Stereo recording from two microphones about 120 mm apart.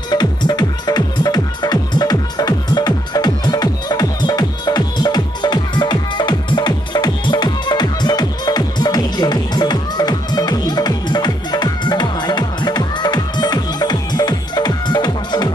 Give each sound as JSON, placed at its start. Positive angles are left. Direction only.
{"t": 0.1, "sound": "music", "side_deg": 35}